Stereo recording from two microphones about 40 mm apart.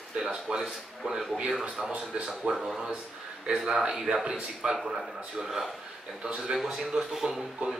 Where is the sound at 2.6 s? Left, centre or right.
Centre.